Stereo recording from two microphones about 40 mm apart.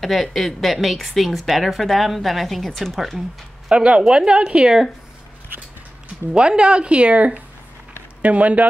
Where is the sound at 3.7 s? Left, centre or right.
Right.